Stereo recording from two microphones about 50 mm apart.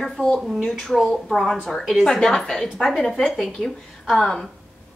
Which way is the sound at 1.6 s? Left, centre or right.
Centre.